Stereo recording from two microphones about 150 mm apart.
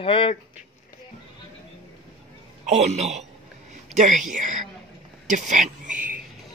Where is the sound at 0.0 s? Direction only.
35° left (ahead or behind).